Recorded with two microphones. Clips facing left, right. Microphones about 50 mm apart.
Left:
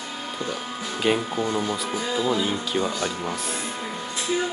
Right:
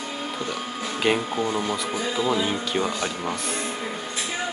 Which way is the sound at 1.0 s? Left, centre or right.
Centre.